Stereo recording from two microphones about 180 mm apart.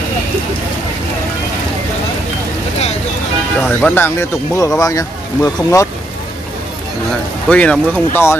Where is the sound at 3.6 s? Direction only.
10° left (ahead or behind).